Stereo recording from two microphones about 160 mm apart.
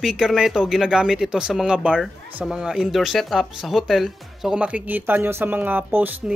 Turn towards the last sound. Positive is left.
turn(degrees=-10)  # may be behind; listen again after turning